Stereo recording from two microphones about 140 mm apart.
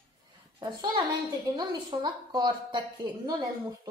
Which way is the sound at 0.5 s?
25° right (ahead or behind).